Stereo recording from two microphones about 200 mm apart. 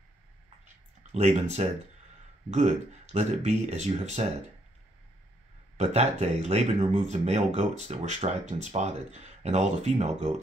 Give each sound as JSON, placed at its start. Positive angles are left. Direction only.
{"t": 1.1, "sound": "speech", "side_deg": -30}
{"t": 5.8, "sound": "speech", "side_deg": -30}